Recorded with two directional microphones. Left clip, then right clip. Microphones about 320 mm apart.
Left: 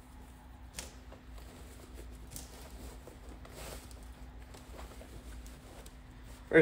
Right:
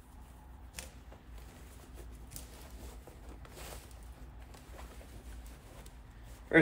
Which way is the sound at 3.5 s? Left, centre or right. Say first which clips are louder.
Left 2 dB; centre.